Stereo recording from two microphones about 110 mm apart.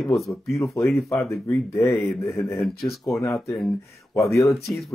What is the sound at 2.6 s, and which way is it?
Speech, centre (ahead or behind).